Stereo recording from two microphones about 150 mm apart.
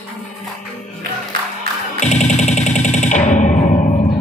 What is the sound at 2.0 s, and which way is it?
Music, 50° left (ahead or behind).